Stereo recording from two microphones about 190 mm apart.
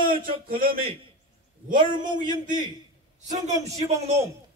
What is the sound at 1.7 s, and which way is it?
Speech, 25° right (ahead or behind).